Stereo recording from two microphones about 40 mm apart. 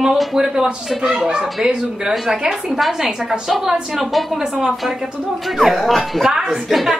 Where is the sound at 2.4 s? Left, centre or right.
Centre.